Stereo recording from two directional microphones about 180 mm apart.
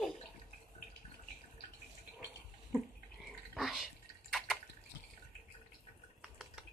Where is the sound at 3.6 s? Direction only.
Centre (ahead or behind).